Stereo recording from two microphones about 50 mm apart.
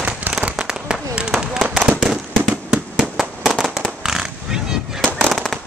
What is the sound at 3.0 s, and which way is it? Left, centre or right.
Fireworks, centre.